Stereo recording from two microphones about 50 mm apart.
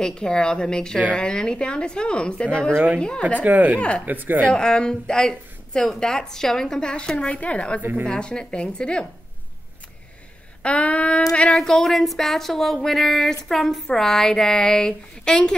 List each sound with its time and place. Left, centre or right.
0.0 s a woman's voice: centre
3.4 s speech: right
4.5 s a woman's voice: centre
10.6 s a woman's voice: left
11.5 s a sound: centre
13.5 s a woman's voice: centre